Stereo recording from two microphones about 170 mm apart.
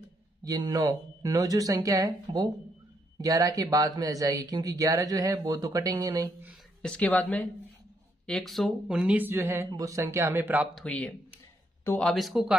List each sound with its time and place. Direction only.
0.5 s speech: 20° right (ahead or behind)
6.8 s speech: 5° left (ahead or behind); by 10.7 s 10° right (ahead or behind)
10.7 s speech: 5° left (ahead or behind)
12.1 s speech: centre (ahead or behind)